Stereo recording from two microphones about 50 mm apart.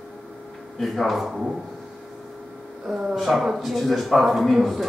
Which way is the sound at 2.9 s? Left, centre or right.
Centre.